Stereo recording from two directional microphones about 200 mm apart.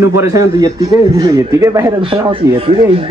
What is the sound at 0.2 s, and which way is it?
A man's voice, 15° right (ahead or behind).